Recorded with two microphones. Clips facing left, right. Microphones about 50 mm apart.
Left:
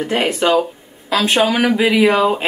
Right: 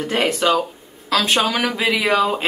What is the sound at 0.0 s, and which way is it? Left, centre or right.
Speech, left.